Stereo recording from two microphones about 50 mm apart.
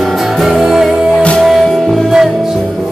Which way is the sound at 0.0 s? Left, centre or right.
Centre.